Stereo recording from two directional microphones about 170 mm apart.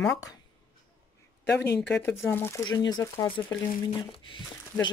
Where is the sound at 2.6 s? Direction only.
25° left (ahead or behind).